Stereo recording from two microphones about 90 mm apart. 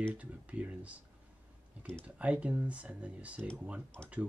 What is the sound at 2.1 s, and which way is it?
Speech, 15° right (ahead or behind).